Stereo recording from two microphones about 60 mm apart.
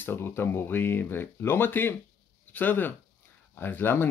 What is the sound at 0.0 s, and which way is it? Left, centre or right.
Speech, left.